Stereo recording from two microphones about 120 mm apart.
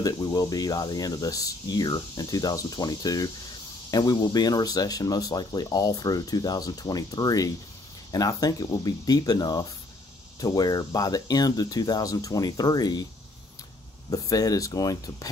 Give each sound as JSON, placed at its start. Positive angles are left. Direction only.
{"t": 0.0, "sound": "speech", "side_deg": 30}
{"t": 14.1, "sound": "speech", "side_deg": 30}